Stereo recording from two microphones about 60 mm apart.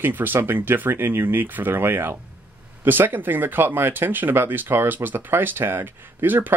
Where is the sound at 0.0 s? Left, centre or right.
Right.